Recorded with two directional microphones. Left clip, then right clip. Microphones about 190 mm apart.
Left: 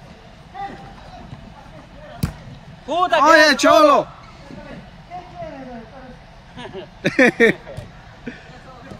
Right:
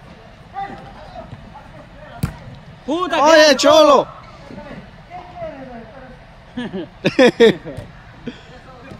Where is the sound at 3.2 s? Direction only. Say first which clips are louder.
Right 3 dB; centre (ahead or behind).